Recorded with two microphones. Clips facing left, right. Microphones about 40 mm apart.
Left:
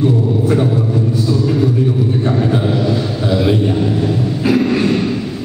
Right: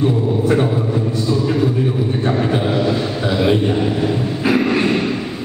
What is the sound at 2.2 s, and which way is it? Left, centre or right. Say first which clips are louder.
Vehicle: even; centre.